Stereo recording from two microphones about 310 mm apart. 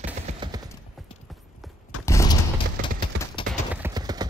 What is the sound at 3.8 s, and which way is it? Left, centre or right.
Clip-clop, centre.